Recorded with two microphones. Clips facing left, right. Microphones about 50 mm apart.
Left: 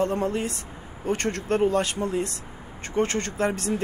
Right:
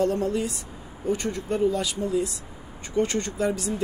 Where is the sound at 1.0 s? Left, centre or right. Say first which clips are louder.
Left 1 dB; left.